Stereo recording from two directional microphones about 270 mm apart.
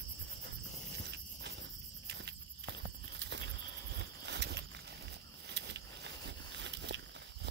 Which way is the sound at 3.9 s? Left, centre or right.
Right.